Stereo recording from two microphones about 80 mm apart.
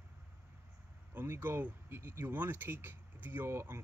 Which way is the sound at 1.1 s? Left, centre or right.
Right.